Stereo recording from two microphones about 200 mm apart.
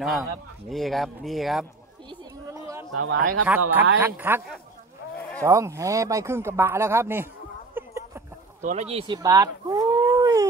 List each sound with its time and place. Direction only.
0.7 s speech: centre (ahead or behind)
2.0 s a sound: 20° right (ahead or behind)
3.0 s speech: 80° right
3.4 s speech: 10° right (ahead or behind)
5.4 s speech: 15° right (ahead or behind)
7.7 s a sound: 15° right (ahead or behind)
8.5 s speech: 35° right (ahead or behind); by 10.4 s 15° right (ahead or behind)